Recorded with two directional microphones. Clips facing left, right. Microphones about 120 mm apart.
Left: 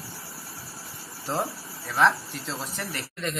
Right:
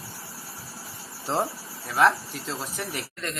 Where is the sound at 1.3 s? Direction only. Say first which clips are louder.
Right 2 dB; 20° right (ahead or behind).